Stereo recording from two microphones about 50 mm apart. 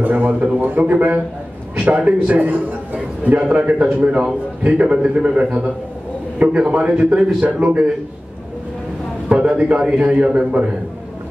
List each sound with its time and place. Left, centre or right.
0.0 s a man's voice: right; by 7.2 s centre
7.3 s a man's voice: right
9.3 s a man's voice: right